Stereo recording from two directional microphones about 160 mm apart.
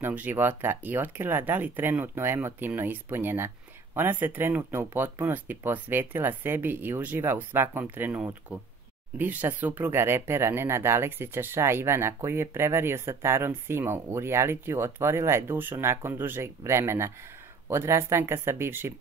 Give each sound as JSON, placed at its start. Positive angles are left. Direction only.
{"t": 0.0, "sound": "speech", "side_deg": -10}